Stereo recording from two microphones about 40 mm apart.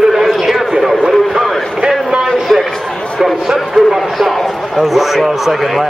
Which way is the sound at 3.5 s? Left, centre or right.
Centre.